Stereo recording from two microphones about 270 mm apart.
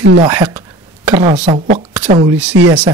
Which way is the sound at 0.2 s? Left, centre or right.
Centre.